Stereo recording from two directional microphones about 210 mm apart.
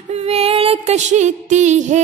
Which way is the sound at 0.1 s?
30° right (ahead or behind).